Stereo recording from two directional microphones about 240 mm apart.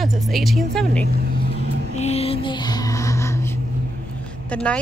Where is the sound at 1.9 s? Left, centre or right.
Left; by 3.6 s centre.